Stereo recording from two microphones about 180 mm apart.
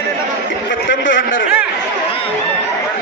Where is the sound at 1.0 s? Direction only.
90° left.